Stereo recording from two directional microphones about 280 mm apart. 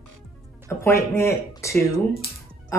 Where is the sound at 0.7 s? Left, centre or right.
Centre.